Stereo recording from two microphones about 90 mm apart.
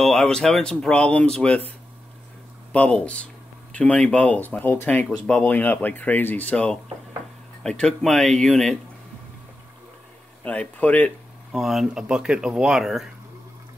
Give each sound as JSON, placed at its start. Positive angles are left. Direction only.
{"t": 0.0, "sound": "speech", "side_deg": 5}
{"t": 2.7, "sound": "speech", "side_deg": 15}
{"t": 10.4, "sound": "speech", "side_deg": 15}
{"t": 11.5, "sound": "speech", "side_deg": 0}